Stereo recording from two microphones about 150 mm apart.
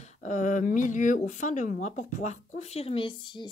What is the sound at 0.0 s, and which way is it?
Speech, 55° left (ahead or behind).